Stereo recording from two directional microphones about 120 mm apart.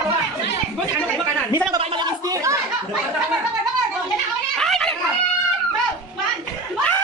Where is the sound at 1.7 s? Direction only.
40° right (ahead or behind).